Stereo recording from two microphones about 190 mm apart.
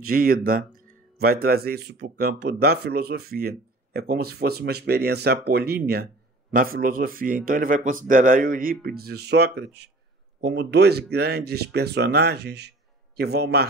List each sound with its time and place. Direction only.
0.0 s a man's voice: 50° right (ahead or behind)